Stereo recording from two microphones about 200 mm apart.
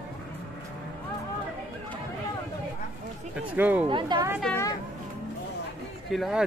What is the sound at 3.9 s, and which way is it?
Speech, 25° right (ahead or behind).